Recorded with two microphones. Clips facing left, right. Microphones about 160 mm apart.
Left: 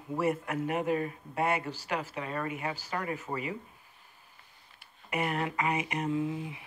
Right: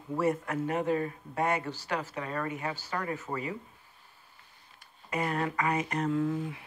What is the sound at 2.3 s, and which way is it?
Speech, 15° left (ahead or behind).